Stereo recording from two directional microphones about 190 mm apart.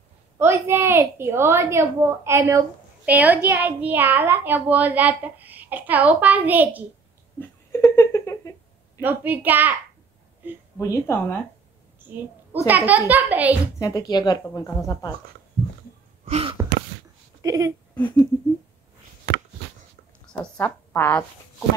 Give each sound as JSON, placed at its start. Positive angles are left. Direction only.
{"t": 0.4, "sound": "a woman's voice", "side_deg": -10}
{"t": 7.3, "sound": "a sound", "side_deg": 10}
{"t": 9.0, "sound": "a woman's voice", "side_deg": -10}
{"t": 10.8, "sound": "a woman's voice", "side_deg": 15}
{"t": 12.6, "sound": "a woman's voice", "side_deg": -10}
{"t": 13.7, "sound": "speech", "side_deg": 20}
{"t": 15.6, "sound": "a sound", "side_deg": 0}
{"t": 16.3, "sound": "sneeze", "side_deg": -30}
{"t": 17.4, "sound": "speech", "side_deg": -15}
{"t": 18.0, "sound": "speech", "side_deg": 20}
{"t": 20.5, "sound": "speech", "side_deg": 10}